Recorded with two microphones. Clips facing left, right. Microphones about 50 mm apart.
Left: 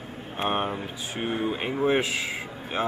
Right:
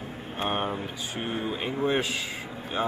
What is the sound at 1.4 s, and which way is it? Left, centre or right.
Speech, left.